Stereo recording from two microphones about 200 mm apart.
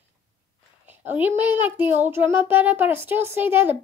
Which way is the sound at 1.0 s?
10° right (ahead or behind).